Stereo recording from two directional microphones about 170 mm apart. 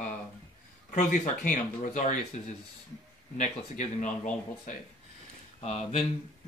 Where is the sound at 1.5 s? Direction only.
45° left (ahead or behind).